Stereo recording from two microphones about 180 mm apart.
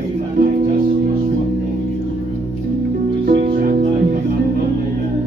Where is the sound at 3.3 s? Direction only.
65° right (ahead or behind).